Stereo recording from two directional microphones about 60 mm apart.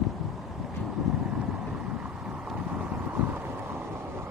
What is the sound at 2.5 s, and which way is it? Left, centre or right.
Vehicle, centre.